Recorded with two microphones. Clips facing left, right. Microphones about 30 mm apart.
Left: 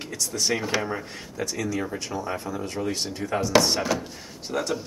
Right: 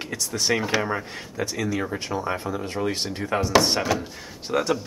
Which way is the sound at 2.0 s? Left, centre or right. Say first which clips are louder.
Right 3 dB; right.